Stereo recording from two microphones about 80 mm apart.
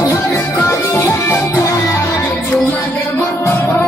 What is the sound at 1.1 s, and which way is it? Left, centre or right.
Music, left.